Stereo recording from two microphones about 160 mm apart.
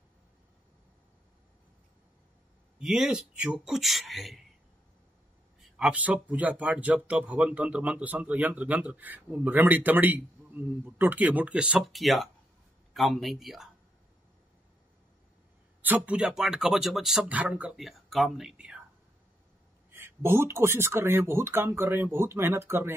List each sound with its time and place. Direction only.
2.8 s speech: centre (ahead or behind)
5.6 s speech: 5° right (ahead or behind)
16.1 s speech: 5° right (ahead or behind)
19.9 s speech: 15° right (ahead or behind)